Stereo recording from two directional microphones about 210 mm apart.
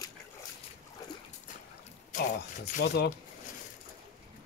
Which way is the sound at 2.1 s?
40° left (ahead or behind).